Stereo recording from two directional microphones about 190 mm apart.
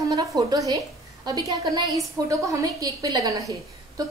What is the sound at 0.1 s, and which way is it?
A woman's voice, 20° right (ahead or behind).